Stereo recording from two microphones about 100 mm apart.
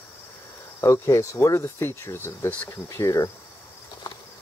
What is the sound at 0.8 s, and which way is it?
Speech, 25° left (ahead or behind).